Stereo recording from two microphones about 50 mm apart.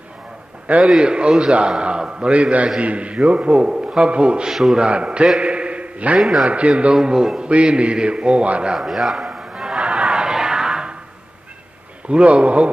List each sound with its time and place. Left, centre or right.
0.9 s a man's voice: right
2.3 s a man's voice: right
4.5 s speech: centre
4.8 s a man's voice: right
5.4 s a sound: right
6.1 s a man's voice: centre
6.5 s a man's voice: right
8.7 s a sound: centre
12.1 s a man's voice: right